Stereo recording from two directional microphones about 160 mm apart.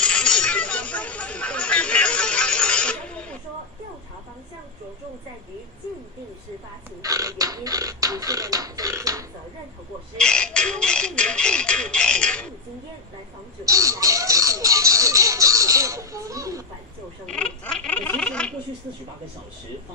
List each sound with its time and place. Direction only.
0.0 s chatter: 5° left (ahead or behind)
7.0 s beatboxing: 20° right (ahead or behind)
10.1 s speech: 5° left (ahead or behind)
13.7 s music: 20° right (ahead or behind)
17.3 s a sound: 5° left (ahead or behind)